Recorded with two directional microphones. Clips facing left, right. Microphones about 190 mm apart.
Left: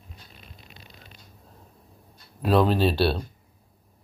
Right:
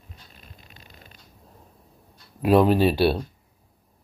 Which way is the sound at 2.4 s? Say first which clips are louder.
Right 3 dB; 10° right (ahead or behind).